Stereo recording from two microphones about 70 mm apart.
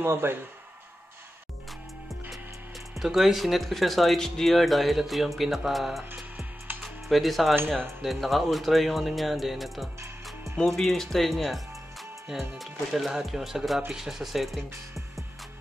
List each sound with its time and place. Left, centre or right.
0.0 s speech: right
3.0 s speech: centre
6.8 s music: centre
7.7 s speech: centre